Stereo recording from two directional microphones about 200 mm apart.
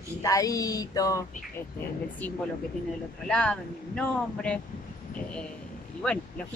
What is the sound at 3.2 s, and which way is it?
Speech, 5° left (ahead or behind).